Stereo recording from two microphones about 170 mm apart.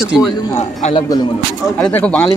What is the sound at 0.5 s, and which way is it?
Speech, 40° left (ahead or behind).